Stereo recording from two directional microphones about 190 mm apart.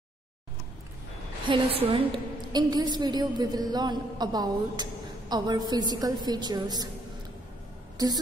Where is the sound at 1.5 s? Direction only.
30° right (ahead or behind).